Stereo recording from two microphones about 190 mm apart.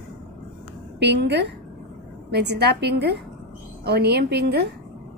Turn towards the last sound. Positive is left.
turn(degrees=-60)  # may be behind; listen again after turning